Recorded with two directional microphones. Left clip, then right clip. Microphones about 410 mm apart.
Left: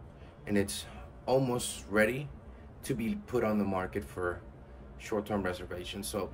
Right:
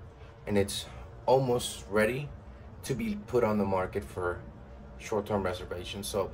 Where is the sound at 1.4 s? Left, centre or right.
Centre.